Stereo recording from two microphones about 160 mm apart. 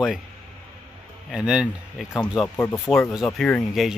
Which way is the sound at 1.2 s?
5° right (ahead or behind).